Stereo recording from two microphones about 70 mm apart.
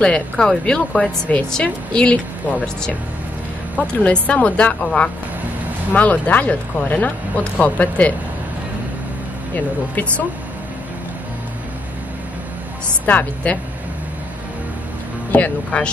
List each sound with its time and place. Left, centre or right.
0.0 s speech: centre
13.0 s speech: left
15.3 s speech: centre